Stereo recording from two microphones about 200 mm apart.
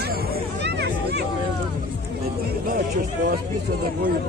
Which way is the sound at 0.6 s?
55° right (ahead or behind).